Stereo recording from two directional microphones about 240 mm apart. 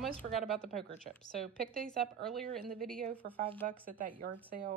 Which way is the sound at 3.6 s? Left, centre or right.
Right.